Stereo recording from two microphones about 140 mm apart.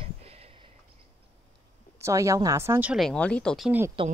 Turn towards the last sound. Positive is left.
turn(degrees=-40)  # may be behind; listen again after turning